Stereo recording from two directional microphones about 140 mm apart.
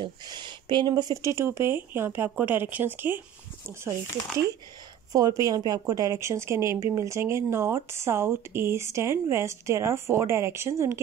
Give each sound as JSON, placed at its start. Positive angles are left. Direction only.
{"t": 0.0, "sound": "speech", "side_deg": -30}
{"t": 5.1, "sound": "a woman's voice", "side_deg": -25}